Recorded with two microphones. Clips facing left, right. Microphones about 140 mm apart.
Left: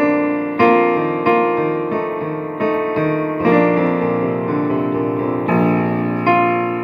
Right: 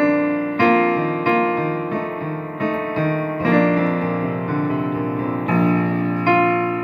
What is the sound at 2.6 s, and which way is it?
Music, 45° left (ahead or behind).